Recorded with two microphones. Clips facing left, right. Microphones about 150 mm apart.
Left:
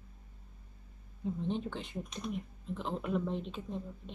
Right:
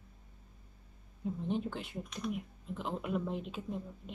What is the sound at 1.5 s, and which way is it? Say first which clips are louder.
Speech: right 1 dB; 5° right (ahead or behind).